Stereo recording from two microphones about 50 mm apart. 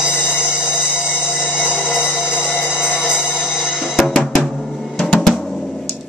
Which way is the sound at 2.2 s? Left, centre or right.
Centre.